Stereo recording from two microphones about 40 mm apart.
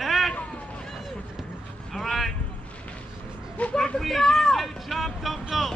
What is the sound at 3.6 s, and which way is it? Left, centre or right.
Speech, left.